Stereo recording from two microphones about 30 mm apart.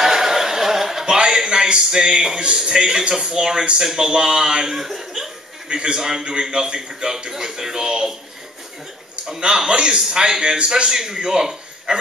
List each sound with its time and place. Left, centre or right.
0.0 s a sound: centre
1.0 s a sound: right
2.1 s a man's voice: centre
4.6 s speech: centre
5.7 s a man's voice: right
5.9 s a man's voice: centre
9.7 s a man's voice: right